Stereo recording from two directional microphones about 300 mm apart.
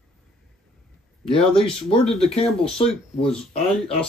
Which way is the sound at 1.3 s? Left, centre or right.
Centre.